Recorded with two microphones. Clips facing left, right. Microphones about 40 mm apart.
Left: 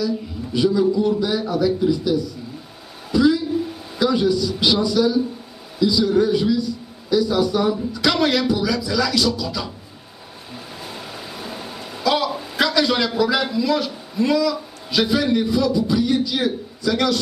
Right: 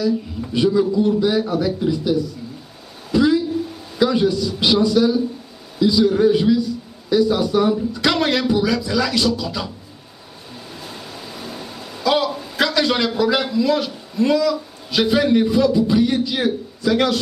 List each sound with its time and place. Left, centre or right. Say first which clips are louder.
0.0 s speech: right 3 dB; centre
3.1 s a sound: even; centre
3.6 s a sound: left 1 dB; centre
4.0 s a man's voice: right 1 dB; centre
4.5 s a man's voice: right 1 dB; right
4.8 s speech: right 2 dB; centre
10.5 s a sound: left 1 dB; centre
12.5 s a man's voice: even; centre
15.0 s a man's voice: right 3 dB; centre